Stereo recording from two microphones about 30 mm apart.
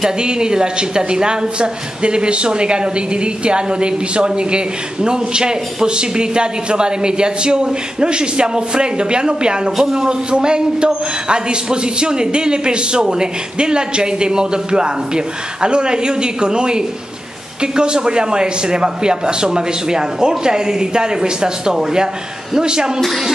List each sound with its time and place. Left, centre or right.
0.0 s speech: right
9.7 s a man's voice: centre
9.9 s speech: right